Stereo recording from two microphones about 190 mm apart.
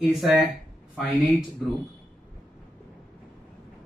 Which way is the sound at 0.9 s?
Centre (ahead or behind).